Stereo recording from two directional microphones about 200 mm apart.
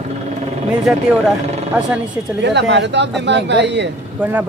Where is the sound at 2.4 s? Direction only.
60° right (ahead or behind).